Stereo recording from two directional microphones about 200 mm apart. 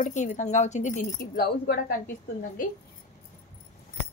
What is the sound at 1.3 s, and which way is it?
Speech, 45° left (ahead or behind).